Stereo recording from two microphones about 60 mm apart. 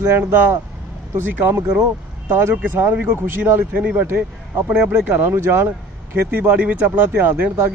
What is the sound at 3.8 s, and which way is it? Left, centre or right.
Speech, right.